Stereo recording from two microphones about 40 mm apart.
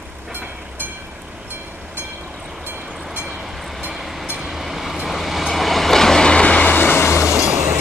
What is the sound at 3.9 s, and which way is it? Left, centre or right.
Train, centre.